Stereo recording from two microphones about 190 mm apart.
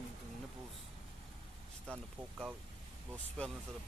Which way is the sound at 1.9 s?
5° right (ahead or behind).